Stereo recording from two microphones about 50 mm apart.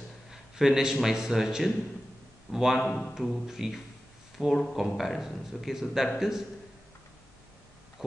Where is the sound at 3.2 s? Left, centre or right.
Centre.